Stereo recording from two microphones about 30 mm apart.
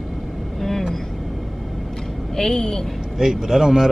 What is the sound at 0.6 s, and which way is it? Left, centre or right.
Vehicle, centre.